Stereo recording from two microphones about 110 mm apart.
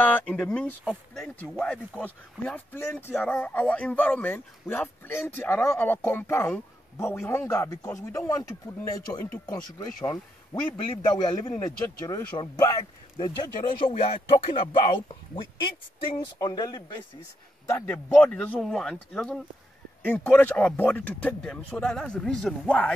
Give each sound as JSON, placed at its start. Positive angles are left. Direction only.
{"t": 0.0, "sound": "speech", "side_deg": 15}
{"t": 11.1, "sound": "a man's voice", "side_deg": 45}
{"t": 11.6, "sound": "a man's voice", "side_deg": 30}
{"t": 16.3, "sound": "speech", "side_deg": 35}
{"t": 17.6, "sound": "speech", "side_deg": 25}
{"t": 20.0, "sound": "speech", "side_deg": 15}